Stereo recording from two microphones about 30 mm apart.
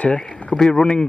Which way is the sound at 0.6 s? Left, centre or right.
Centre.